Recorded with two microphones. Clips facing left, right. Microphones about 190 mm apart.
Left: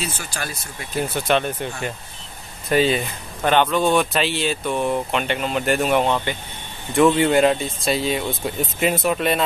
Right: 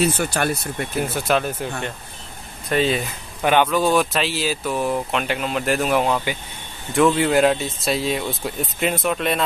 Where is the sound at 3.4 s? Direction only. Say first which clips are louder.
Even; 10° right (ahead or behind).